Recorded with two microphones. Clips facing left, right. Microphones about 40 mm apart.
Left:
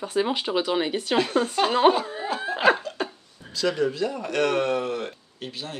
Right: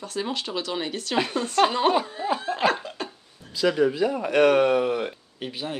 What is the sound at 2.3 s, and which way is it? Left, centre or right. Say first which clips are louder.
Laughter: left 3 dB; centre.